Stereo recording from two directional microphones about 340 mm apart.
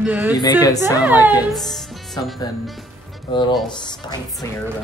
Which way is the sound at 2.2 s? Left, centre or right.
Centre.